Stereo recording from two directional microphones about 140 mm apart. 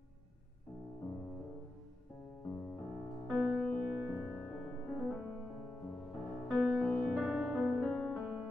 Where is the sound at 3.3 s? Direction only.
Centre (ahead or behind).